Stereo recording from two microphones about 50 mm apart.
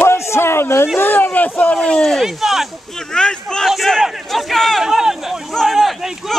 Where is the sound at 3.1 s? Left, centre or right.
Centre.